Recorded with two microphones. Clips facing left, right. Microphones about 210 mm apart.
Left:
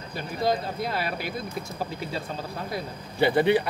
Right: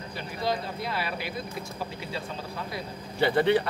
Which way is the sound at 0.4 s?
45° left (ahead or behind).